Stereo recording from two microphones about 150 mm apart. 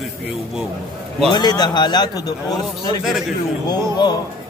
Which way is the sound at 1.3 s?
30° left (ahead or behind).